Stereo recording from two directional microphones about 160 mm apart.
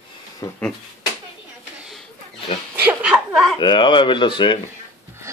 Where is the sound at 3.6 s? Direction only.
30° left (ahead or behind).